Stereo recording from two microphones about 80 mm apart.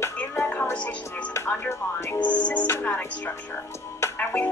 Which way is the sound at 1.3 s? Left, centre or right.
Left.